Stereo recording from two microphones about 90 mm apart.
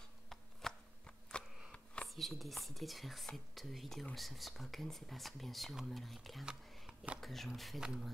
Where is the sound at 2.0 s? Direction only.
Centre (ahead or behind).